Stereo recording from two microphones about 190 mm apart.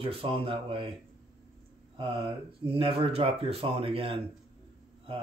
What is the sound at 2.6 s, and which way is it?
Speech, 30° right (ahead or behind).